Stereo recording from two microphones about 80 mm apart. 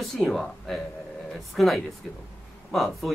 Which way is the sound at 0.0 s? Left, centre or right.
Centre.